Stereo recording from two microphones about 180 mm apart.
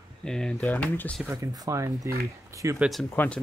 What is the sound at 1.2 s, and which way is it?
Speech, 15° right (ahead or behind).